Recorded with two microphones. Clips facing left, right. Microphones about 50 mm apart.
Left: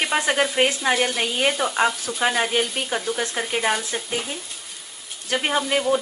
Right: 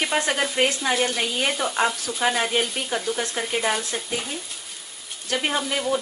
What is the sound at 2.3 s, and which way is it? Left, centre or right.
Speech, centre.